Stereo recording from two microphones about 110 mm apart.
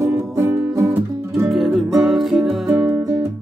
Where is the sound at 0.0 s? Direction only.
30° right (ahead or behind).